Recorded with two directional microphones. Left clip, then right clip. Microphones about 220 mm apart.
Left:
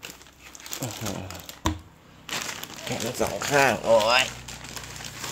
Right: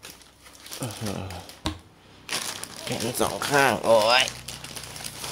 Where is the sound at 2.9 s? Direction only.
15° right (ahead or behind).